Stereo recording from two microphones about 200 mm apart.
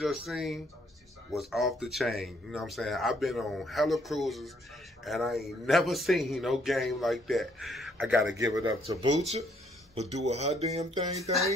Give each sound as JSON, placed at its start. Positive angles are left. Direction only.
{"t": 0.0, "sound": "speech", "side_deg": 0}
{"t": 8.4, "sound": "a man's voice", "side_deg": -15}
{"t": 9.9, "sound": "speech", "side_deg": -35}